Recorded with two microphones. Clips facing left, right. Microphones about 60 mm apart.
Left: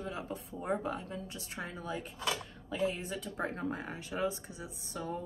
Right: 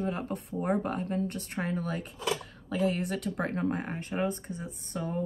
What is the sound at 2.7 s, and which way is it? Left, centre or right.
Speech, right.